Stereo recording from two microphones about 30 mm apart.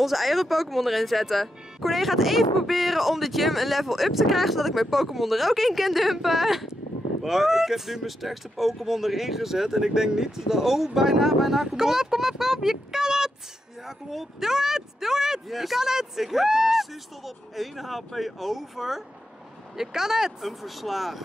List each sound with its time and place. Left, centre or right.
0.0 s speech: centre
15.4 s speech: centre
15.8 s speech: centre
16.7 s speech: centre
20.4 s speech: centre